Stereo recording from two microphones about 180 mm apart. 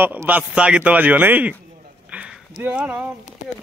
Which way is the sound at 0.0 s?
10° right (ahead or behind).